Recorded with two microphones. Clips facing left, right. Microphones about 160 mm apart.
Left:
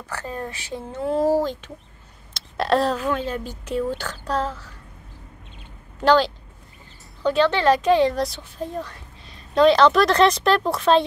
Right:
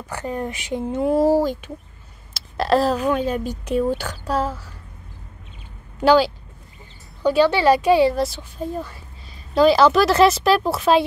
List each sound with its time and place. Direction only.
0.1 s speech: 15° right (ahead or behind)
2.3 s a sound: centre (ahead or behind)
3.0 s speech: 15° right (ahead or behind)
5.9 s speech: 10° right (ahead or behind)